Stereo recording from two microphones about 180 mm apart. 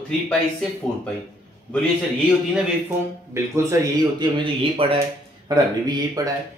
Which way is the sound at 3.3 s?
15° right (ahead or behind).